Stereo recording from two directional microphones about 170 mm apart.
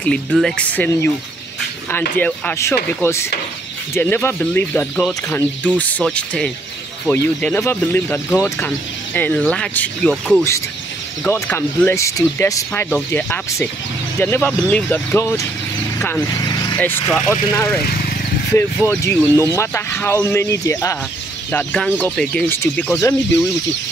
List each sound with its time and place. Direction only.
0.3 s speech: centre (ahead or behind)
2.1 s speech: 10° left (ahead or behind)
7.1 s speech: 15° left (ahead or behind)
16.3 s vehicle: 20° left (ahead or behind)
16.7 s speech: 10° left (ahead or behind)